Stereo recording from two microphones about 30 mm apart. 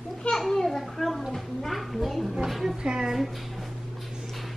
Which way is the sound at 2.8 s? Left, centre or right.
Right.